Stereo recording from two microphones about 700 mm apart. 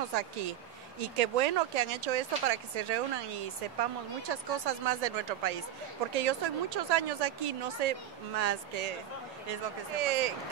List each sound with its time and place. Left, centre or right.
1.1 s speech: right